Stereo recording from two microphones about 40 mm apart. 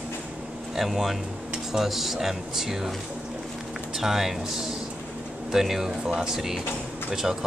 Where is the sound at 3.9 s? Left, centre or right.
Centre.